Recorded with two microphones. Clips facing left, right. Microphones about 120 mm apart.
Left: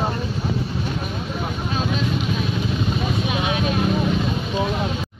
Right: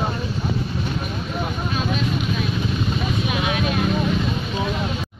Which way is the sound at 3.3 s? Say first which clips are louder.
Even; 25° left (ahead or behind).